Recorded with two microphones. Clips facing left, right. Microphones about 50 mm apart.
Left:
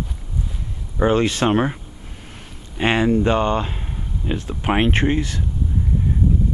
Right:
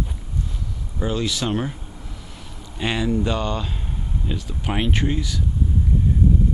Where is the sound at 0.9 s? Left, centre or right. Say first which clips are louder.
Left 7 dB; left.